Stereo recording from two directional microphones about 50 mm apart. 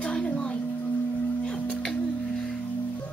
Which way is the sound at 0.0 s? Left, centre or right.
Centre.